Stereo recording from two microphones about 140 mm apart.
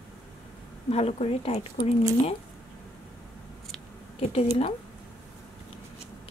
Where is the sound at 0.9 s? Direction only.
45° left (ahead or behind).